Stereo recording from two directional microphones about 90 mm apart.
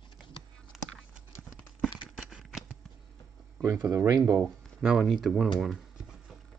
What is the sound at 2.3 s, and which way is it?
Scissors, 5° right (ahead or behind).